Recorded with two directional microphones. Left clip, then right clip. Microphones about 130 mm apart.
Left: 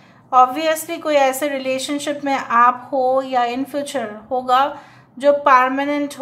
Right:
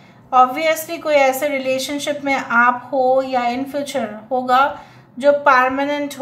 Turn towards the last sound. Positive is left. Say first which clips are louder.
# right 1 dB
turn(degrees=25)  # may be behind; listen again after turning